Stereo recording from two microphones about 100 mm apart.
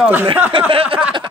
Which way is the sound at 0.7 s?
70° right (ahead or behind).